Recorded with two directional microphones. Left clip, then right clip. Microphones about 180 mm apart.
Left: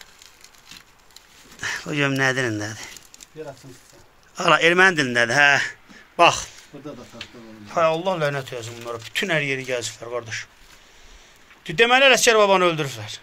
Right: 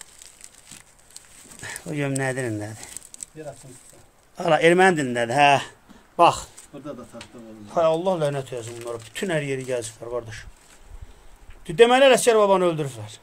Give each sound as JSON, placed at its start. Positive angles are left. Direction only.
{"t": 1.6, "sound": "speech", "side_deg": 0}
{"t": 4.4, "sound": "a man's voice", "side_deg": -10}
{"t": 7.1, "sound": "speech", "side_deg": 10}
{"t": 7.6, "sound": "speech", "side_deg": -25}
{"t": 8.6, "sound": "speech", "side_deg": -5}
{"t": 9.1, "sound": "speech", "side_deg": -20}
{"t": 11.6, "sound": "speech", "side_deg": -10}